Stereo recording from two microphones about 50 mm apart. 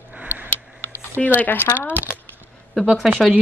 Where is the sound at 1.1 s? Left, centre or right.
Left.